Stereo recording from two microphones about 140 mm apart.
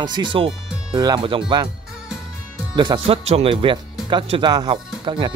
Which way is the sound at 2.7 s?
35° right (ahead or behind).